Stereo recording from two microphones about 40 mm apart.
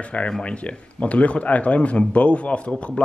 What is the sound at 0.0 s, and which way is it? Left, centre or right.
A man's voice, left.